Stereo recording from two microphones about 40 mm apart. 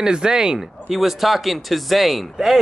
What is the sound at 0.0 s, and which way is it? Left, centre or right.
Speech, centre.